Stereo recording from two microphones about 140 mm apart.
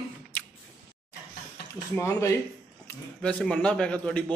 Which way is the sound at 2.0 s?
20° left (ahead or behind).